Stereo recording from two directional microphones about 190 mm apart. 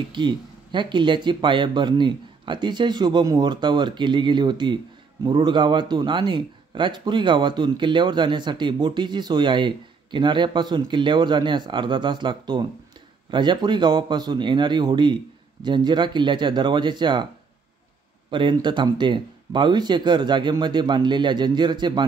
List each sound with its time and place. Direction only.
0.1 s speech: 25° right (ahead or behind)
18.3 s speech: 25° right (ahead or behind)